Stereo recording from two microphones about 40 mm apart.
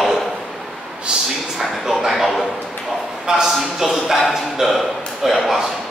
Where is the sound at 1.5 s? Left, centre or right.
Centre.